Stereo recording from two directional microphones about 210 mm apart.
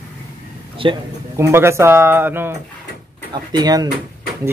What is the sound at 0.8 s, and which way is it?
Speech, 25° right (ahead or behind).